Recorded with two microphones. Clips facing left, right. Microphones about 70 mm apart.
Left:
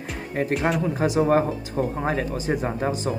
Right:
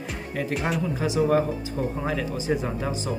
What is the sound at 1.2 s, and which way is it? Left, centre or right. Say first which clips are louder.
Speech: left 1 dB; left.